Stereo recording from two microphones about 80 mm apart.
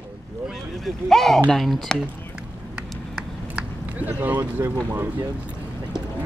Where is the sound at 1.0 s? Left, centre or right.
Centre.